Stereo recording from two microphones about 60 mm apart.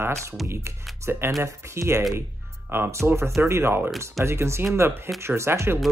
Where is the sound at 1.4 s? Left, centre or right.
Right.